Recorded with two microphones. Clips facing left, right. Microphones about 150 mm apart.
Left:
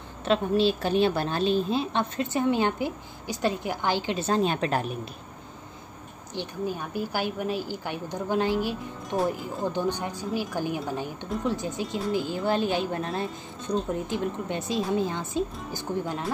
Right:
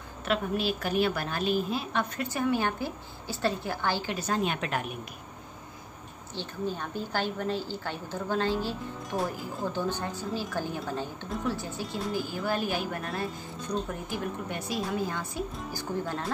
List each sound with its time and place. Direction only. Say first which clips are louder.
0.2 s a woman's voice: left 6 dB; 30° left (ahead or behind)
6.3 s a woman's voice: left 2 dB; 10° left (ahead or behind)